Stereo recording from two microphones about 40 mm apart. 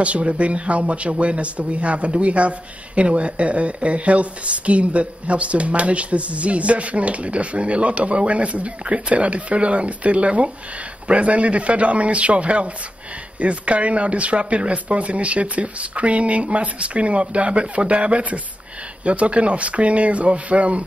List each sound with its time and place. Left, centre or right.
0.0 s a man's voice: right